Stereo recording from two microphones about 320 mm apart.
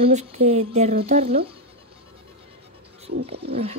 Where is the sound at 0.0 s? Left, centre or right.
Centre.